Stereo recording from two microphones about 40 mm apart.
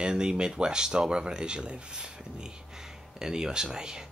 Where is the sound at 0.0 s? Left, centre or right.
Right.